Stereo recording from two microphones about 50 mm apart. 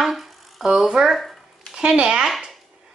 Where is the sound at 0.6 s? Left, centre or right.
Centre.